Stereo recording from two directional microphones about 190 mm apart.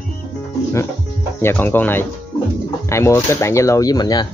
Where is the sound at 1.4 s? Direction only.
10° left (ahead or behind).